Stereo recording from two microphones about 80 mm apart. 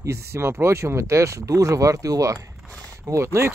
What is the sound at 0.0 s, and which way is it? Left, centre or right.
Speech, right.